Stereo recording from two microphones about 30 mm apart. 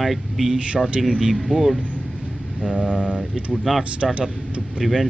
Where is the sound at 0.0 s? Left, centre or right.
Centre.